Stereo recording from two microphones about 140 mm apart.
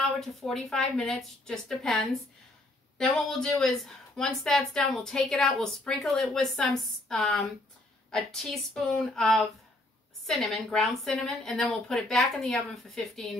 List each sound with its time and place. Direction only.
0.0 s a woman's voice: centre (ahead or behind)